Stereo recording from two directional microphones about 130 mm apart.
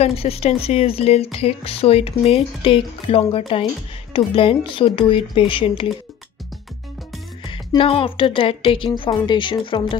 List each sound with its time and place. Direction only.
0.0 s speech: 50° left (ahead or behind)
7.5 s a woman's voice: 45° left (ahead or behind)